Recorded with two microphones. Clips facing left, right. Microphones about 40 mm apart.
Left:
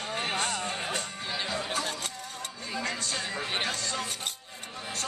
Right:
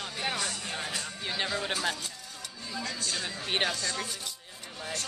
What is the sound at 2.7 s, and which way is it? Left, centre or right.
Music, left.